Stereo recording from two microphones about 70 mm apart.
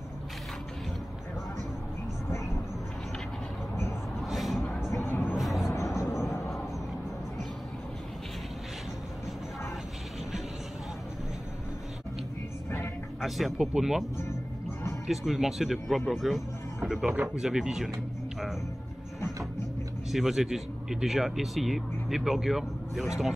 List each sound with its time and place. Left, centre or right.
4.2 s vehicle: centre
5.0 s vehicle: left
5.3 s a sound: centre
6.1 s a sound: left
13.2 s speech: centre
15.0 s speech: centre
16.1 s music: centre
17.4 s speech: centre
20.1 s speech: centre